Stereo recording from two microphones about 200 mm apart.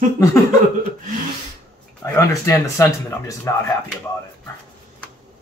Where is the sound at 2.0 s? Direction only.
15° left (ahead or behind).